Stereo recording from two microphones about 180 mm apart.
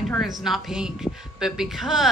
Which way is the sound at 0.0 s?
Centre (ahead or behind).